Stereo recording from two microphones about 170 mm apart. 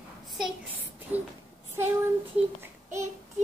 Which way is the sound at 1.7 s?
15° right (ahead or behind).